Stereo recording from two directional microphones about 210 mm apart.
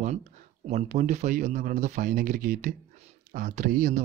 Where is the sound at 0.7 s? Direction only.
35° right (ahead or behind).